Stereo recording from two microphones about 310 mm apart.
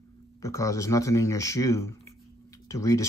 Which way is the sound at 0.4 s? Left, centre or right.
Centre.